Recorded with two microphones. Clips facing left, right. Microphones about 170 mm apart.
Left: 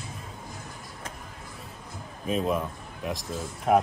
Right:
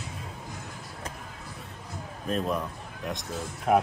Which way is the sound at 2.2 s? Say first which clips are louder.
Left 2 dB; 5° left (ahead or behind).